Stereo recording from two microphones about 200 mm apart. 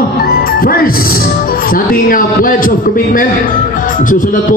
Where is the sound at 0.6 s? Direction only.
45° left (ahead or behind).